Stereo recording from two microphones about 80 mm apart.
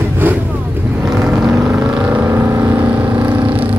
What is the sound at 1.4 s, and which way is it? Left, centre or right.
Vehicle, centre.